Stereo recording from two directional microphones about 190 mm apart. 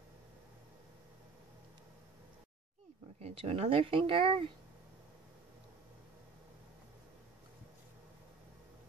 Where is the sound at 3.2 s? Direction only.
30° right (ahead or behind).